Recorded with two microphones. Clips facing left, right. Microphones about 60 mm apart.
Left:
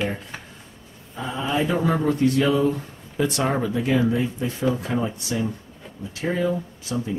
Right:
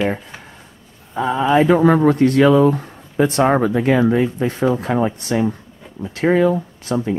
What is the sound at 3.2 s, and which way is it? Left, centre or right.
Speech, right.